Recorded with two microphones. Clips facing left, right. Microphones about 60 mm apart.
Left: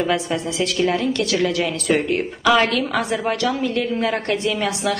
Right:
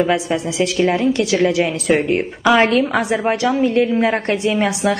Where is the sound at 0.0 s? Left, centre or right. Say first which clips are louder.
Right 4 dB; centre.